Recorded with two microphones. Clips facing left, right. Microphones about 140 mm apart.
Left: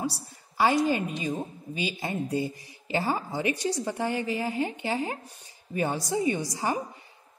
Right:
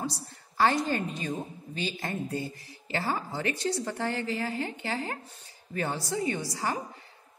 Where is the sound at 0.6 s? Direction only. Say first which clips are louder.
Left 2 dB; 10° left (ahead or behind).